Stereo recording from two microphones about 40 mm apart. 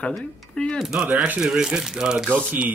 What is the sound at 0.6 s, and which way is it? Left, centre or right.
Speech, left.